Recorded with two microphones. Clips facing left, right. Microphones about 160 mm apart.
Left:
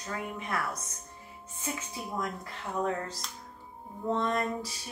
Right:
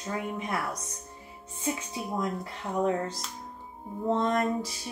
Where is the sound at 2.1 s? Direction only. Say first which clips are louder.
Right 4 dB; 25° right (ahead or behind).